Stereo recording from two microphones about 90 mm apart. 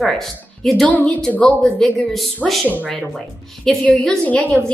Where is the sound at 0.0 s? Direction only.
5° left (ahead or behind).